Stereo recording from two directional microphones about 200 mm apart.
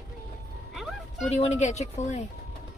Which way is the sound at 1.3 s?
35° left (ahead or behind).